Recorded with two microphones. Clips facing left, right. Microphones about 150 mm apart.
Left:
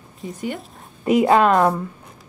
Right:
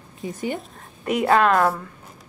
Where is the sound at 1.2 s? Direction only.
20° left (ahead or behind).